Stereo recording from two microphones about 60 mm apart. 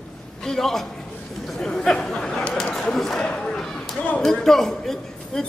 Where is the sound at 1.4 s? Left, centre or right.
Centre.